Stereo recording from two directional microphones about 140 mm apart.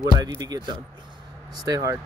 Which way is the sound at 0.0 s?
30° right (ahead or behind).